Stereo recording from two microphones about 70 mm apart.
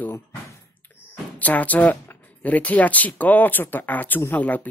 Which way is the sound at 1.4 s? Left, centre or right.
Left.